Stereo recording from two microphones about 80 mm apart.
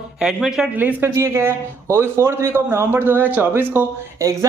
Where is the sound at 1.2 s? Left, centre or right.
Right.